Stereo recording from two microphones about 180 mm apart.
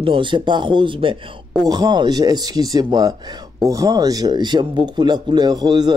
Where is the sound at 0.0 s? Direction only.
30° right (ahead or behind).